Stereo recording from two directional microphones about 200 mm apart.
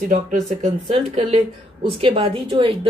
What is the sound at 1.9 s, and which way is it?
A woman's voice, 25° right (ahead or behind).